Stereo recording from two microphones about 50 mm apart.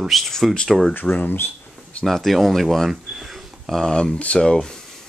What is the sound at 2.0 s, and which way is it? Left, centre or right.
Speech, centre.